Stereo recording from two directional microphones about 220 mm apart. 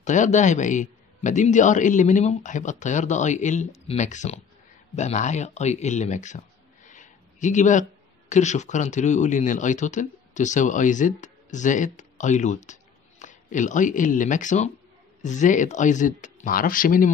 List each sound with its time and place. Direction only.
0.0 s speech: 35° left (ahead or behind)